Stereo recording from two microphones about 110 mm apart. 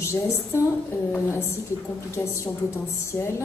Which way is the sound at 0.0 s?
25° left (ahead or behind).